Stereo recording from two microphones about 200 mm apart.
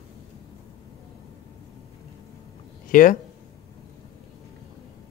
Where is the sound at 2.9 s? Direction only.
45° left (ahead or behind).